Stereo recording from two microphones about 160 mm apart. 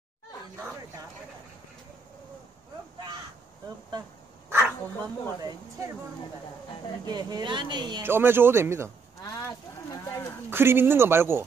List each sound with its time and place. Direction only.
4.5 s a sound: 10° right (ahead or behind)
7.1 s speech: 25° right (ahead or behind)
8.0 s speech: 15° right (ahead or behind)
9.2 s livestock: 20° left (ahead or behind)
10.5 s speech: 15° right (ahead or behind)